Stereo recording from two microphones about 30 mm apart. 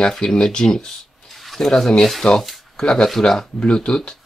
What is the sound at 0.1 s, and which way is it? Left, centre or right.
Speech, left.